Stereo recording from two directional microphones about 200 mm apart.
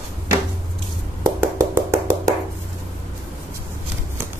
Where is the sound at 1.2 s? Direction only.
10° right (ahead or behind).